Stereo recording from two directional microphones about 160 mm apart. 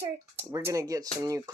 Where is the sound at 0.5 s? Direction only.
20° right (ahead or behind).